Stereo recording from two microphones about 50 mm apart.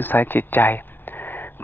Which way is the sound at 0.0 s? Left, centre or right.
Left.